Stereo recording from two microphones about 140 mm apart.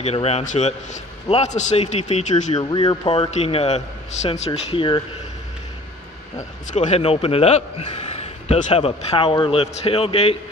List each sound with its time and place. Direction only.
0.0 s a man's voice: 45° left (ahead or behind)
2.5 s a man's voice: 30° left (ahead or behind); by 4.4 s 50° left (ahead or behind)
4.6 s speech: 35° left (ahead or behind)
6.7 s a man's voice: 60° left (ahead or behind)
7.0 s a man's voice: 40° left (ahead or behind)